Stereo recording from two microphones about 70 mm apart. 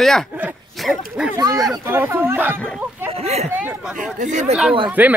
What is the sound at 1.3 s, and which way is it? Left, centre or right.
Speech, right.